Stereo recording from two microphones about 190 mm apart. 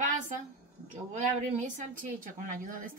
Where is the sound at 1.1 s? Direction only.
40° right (ahead or behind).